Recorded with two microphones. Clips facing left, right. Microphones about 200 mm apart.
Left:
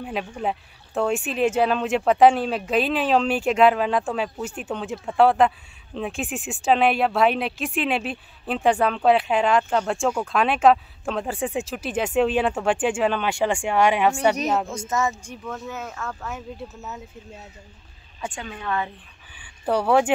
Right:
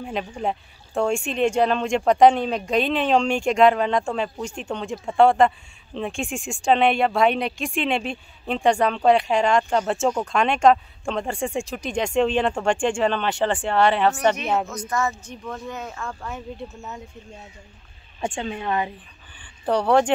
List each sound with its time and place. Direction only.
0.0 s speech: centre (ahead or behind)
14.7 s speech: 25° left (ahead or behind)
15.4 s speech: 5° left (ahead or behind)
18.2 s a woman's voice: 25° right (ahead or behind)
19.3 s a sound: 10° left (ahead or behind)